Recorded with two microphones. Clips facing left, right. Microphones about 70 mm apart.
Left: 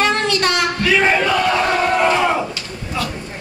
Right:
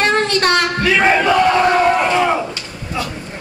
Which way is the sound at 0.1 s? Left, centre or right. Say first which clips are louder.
Right 3 dB; right.